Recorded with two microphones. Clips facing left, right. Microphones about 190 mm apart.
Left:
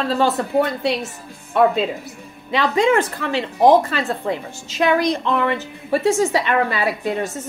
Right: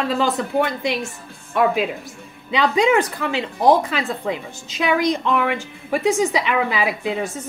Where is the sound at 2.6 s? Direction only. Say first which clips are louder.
Even; 15° right (ahead or behind).